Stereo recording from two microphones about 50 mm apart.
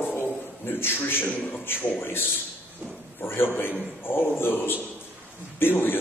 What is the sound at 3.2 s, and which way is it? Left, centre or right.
A man's voice, left.